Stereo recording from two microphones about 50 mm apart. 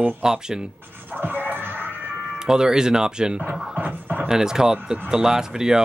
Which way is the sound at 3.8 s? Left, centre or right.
Right.